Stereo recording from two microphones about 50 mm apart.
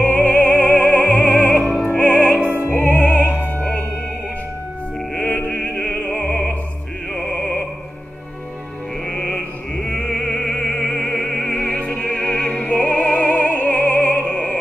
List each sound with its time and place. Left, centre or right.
0.0 s music: left
2.4 s music: right
2.7 s music: left
5.1 s music: left
5.7 s opera: left
9.0 s music: centre
9.8 s opera: centre
11.7 s opera: left